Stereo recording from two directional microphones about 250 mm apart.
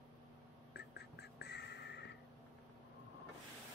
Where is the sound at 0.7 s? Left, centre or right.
Left.